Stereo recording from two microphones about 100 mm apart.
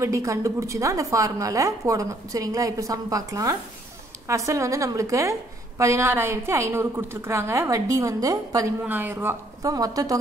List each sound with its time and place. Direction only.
0.0 s a woman's voice: 35° right (ahead or behind)
8.8 s a woman's voice: 20° right (ahead or behind)
9.7 s a woman's voice: 35° right (ahead or behind)